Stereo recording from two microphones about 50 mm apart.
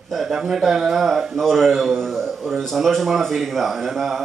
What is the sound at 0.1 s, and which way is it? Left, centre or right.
A man's voice, centre.